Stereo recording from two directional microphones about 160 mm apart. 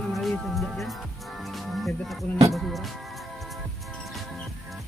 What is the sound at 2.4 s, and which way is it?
Music, centre (ahead or behind).